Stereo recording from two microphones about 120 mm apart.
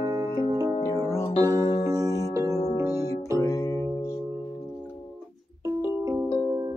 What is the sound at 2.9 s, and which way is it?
Music, 25° left (ahead or behind).